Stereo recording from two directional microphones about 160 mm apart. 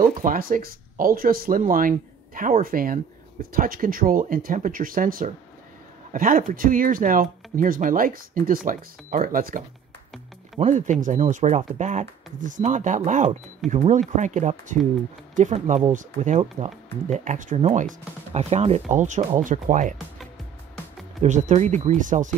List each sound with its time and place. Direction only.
0.0 s speech: 60° right (ahead or behind)
10.6 s speech: 50° right (ahead or behind)
21.2 s speech: 50° right (ahead or behind)